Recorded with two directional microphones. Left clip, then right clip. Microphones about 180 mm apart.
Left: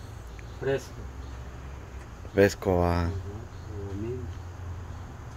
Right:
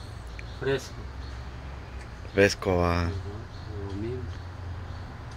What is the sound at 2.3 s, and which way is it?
Speech, 30° left (ahead or behind).